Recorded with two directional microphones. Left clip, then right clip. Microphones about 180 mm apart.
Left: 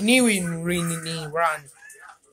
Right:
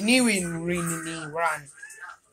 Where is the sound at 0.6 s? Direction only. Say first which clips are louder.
Left 2 dB; 45° left (ahead or behind).